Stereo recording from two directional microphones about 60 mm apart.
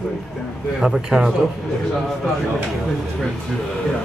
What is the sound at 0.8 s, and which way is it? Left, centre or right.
Speech, centre.